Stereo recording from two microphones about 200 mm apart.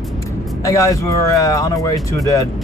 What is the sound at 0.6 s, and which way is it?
Speech, 15° left (ahead or behind).